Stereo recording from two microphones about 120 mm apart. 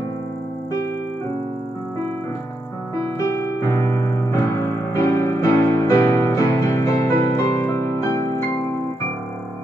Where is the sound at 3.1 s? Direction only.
25° left (ahead or behind).